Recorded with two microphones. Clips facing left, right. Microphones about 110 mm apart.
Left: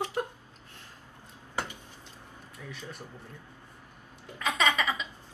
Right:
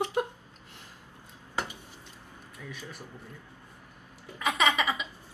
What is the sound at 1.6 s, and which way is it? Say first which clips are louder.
Tick-tock: even; 15° right (ahead or behind).